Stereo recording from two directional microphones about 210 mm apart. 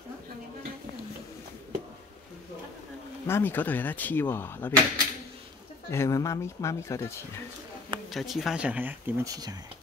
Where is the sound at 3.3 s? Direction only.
10° left (ahead or behind).